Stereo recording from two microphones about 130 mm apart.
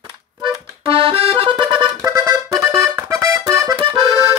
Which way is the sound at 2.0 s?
25° right (ahead or behind).